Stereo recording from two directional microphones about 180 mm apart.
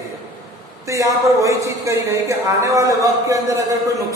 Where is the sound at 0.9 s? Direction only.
15° right (ahead or behind).